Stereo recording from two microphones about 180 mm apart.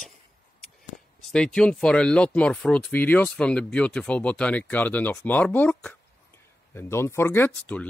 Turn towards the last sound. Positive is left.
turn(degrees=10)  # may be behind; listen again after turning